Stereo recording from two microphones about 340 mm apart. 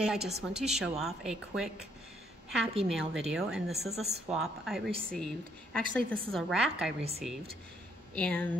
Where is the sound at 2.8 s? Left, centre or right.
Centre.